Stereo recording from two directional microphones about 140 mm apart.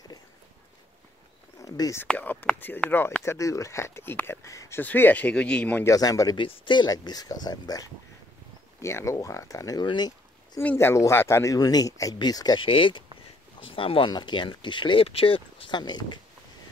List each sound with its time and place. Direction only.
1.6 s speech: 20° left (ahead or behind)
2.0 s speech: 10° left (ahead or behind)
5.9 s speech: 25° left (ahead or behind)
10.6 s speech: 15° left (ahead or behind); by 16.1 s 30° left (ahead or behind)